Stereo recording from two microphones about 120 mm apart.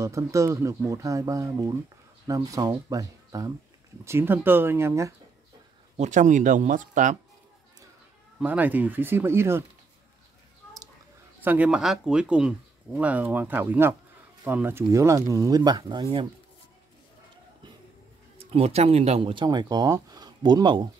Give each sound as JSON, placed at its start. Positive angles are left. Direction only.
{"t": 0.0, "sound": "speech", "side_deg": -25}
{"t": 4.0, "sound": "speech", "side_deg": -20}
{"t": 5.9, "sound": "speech", "side_deg": -90}
{"t": 8.5, "sound": "speech", "side_deg": -15}
{"t": 11.4, "sound": "speech", "side_deg": -10}
{"t": 18.4, "sound": "speech", "side_deg": -55}